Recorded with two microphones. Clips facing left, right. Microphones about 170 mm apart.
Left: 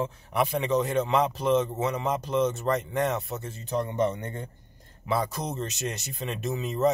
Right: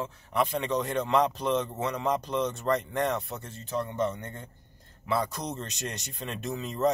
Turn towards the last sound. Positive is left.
turn(degrees=5)  # may be behind; listen again after turning